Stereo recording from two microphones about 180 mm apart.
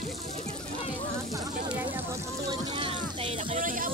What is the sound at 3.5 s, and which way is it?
Speech, 50° right (ahead or behind).